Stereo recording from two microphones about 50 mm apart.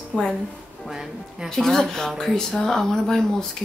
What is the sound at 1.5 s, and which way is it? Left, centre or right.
Speech, centre.